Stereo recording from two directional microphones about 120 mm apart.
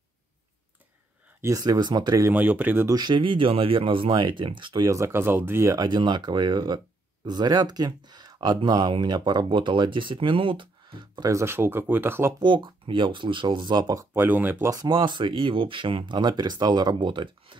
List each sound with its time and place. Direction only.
1.4 s speech: 30° right (ahead or behind)
2.3 s speech: 15° right (ahead or behind)
2.9 s speech: 35° right (ahead or behind)
4.8 s speech: 25° right (ahead or behind)
11.3 s speech: 20° right (ahead or behind)
12.4 s speech: 40° right (ahead or behind)
14.1 s speech: 15° right (ahead or behind)
14.7 s speech: 30° right (ahead or behind)